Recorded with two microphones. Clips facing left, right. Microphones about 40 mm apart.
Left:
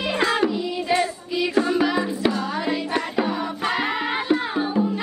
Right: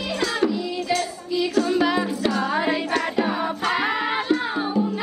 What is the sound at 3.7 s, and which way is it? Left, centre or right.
Music, centre.